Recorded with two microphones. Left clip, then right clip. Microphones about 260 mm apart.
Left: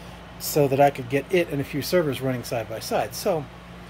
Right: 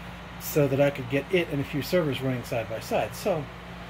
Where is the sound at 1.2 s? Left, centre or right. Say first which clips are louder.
Left 3 dB; left.